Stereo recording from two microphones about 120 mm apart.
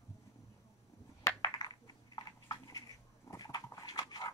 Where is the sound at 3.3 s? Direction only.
30° left (ahead or behind).